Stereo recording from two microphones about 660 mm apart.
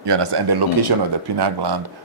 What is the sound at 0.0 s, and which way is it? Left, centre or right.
Speech, right.